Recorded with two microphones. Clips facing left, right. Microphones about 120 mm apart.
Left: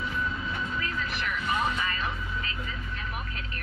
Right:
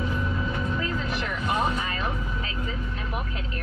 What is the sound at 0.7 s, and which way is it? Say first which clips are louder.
Vehicle: right 4 dB; 35° right (ahead or behind).